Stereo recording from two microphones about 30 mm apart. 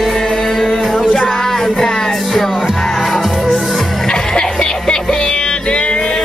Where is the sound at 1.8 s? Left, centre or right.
Left.